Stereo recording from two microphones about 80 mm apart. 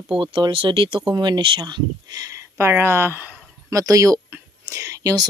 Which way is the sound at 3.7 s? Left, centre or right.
Right.